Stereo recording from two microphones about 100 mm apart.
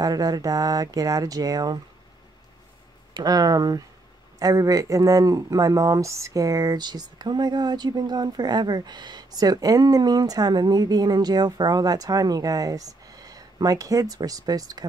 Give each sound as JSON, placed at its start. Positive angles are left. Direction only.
{"t": 0.0, "sound": "speech", "side_deg": -40}
{"t": 3.2, "sound": "speech", "side_deg": -40}